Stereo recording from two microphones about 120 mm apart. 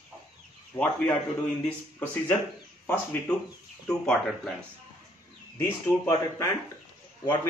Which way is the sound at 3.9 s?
10° left (ahead or behind).